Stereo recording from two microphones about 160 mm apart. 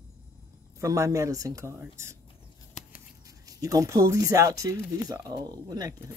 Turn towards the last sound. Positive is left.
turn(degrees=-25)  # may be behind; listen again after turning